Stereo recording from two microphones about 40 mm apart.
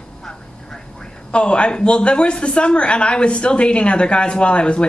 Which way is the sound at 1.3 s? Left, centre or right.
Left.